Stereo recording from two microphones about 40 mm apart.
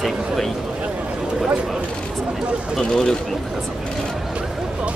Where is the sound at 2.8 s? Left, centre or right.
Centre.